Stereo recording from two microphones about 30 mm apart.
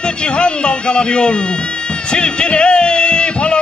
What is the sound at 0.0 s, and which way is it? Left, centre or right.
A man's voice, left.